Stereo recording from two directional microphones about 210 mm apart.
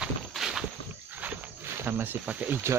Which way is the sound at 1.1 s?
10° right (ahead or behind).